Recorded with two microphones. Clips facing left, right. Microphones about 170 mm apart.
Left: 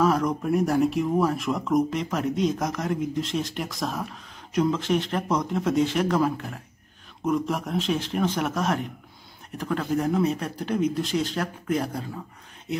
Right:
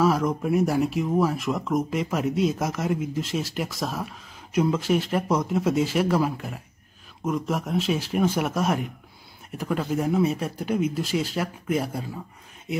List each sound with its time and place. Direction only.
0.0 s speech: centre (ahead or behind)